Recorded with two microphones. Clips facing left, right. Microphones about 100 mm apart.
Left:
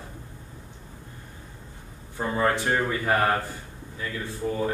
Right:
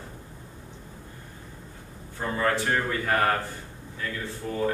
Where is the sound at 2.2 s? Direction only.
15° left (ahead or behind).